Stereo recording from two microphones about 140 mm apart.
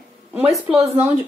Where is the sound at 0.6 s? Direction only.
10° right (ahead or behind).